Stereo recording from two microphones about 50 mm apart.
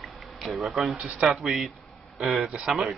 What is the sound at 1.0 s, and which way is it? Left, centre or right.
Speech, right.